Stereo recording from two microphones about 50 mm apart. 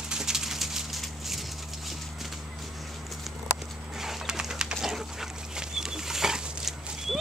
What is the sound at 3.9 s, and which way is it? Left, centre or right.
Bird, centre.